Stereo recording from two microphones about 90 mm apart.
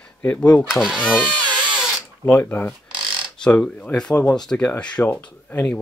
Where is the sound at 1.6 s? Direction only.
10° right (ahead or behind).